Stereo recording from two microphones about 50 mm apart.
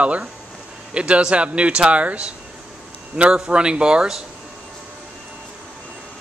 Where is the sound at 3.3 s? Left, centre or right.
Centre.